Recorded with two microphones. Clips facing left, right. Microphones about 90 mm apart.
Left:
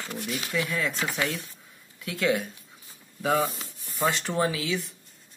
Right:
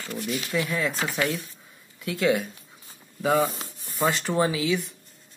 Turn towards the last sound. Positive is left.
turn(degrees=-15)  # may be behind; listen again after turning